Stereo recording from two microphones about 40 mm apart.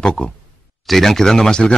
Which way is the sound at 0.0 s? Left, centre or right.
Left.